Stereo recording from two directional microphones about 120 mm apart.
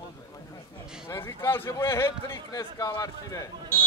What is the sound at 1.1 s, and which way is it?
A man's voice, 20° left (ahead or behind).